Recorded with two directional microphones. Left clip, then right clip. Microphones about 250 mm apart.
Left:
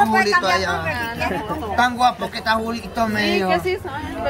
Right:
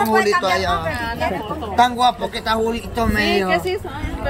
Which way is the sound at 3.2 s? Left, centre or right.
Centre.